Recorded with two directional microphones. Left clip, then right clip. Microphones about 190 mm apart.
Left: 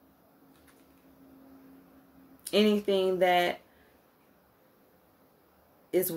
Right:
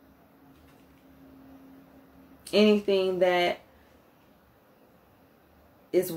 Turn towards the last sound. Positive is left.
turn(degrees=45)  # may be behind; listen again after turning